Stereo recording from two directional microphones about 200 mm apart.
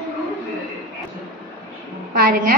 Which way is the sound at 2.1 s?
45° right (ahead or behind).